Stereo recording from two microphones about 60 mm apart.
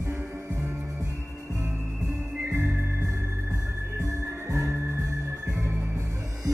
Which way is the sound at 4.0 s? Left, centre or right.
Right.